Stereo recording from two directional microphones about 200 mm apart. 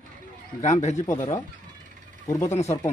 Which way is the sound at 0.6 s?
35° left (ahead or behind).